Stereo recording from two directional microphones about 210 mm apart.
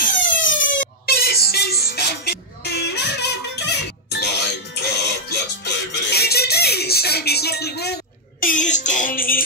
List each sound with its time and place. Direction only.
0.0 s siren: 40° left (ahead or behind)
0.6 s music: 55° left (ahead or behind)